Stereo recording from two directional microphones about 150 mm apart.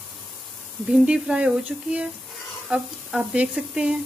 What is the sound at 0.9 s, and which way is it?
Speech, 5° right (ahead or behind).